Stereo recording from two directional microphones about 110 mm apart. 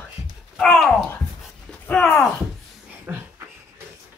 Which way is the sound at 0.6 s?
5° left (ahead or behind).